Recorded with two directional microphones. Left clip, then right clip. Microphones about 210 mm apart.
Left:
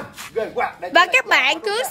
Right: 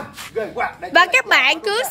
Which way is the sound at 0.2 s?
Centre (ahead or behind).